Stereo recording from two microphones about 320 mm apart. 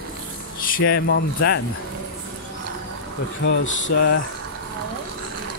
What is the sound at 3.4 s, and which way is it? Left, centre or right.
Speech, left.